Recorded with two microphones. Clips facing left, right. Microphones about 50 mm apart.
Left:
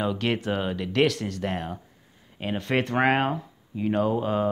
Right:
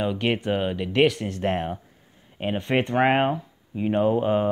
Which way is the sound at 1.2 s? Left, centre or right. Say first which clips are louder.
Right 4 dB; right.